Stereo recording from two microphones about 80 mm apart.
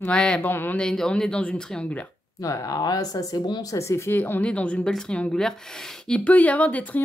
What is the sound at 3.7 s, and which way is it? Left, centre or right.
Speech, left.